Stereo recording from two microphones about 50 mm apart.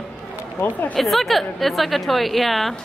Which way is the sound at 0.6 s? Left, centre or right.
Left.